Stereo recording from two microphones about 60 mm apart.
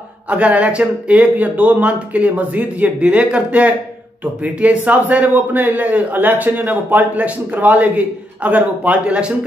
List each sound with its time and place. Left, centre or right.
0.3 s speech: right